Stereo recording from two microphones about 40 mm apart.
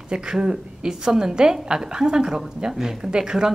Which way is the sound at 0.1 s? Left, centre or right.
Centre.